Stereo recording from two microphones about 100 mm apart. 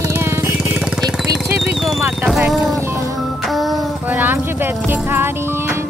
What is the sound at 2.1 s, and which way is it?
Vehicle, 5° right (ahead or behind).